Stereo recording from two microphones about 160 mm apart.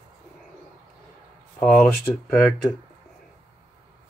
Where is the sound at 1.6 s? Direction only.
5° left (ahead or behind).